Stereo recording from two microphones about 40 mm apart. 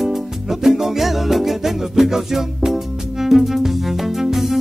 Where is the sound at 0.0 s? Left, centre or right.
Centre.